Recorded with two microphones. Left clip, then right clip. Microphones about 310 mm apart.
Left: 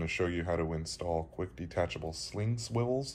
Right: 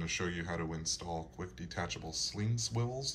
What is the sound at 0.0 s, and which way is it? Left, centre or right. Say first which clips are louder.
Speech: left 4 dB; centre.